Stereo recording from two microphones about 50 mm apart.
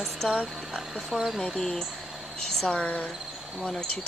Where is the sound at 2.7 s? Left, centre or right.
Left.